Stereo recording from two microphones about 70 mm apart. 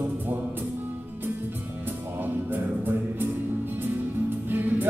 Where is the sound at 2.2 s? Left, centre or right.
Right.